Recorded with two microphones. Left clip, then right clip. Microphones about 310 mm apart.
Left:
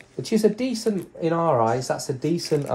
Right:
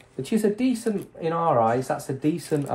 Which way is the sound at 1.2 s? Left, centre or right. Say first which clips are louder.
Left 1 dB; left.